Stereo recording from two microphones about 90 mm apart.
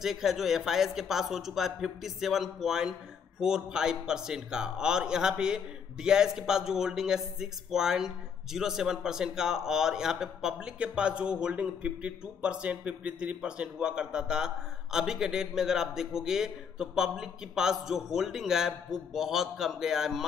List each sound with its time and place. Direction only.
0.0 s a man's voice: 5° right (ahead or behind)